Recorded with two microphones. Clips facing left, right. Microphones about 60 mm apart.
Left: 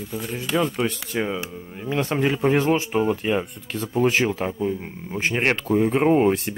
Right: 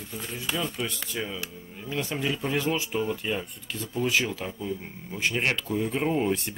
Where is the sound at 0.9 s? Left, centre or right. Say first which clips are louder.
Left 8 dB; left.